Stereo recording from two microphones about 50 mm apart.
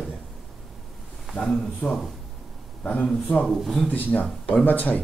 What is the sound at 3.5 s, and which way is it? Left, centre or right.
Speech, centre.